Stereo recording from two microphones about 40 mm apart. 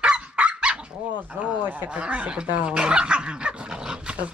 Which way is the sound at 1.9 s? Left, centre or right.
Right.